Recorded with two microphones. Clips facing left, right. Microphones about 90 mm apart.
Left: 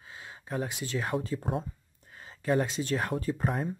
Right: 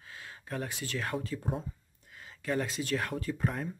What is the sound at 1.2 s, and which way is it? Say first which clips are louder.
Speech: left 3 dB; 35° left (ahead or behind).